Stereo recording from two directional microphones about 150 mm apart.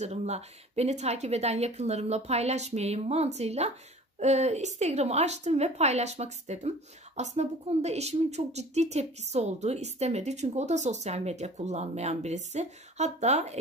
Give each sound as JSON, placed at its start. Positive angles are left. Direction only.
{"t": 0.0, "sound": "speech", "side_deg": -45}